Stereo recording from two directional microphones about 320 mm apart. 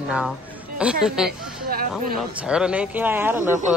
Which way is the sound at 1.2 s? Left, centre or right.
Right.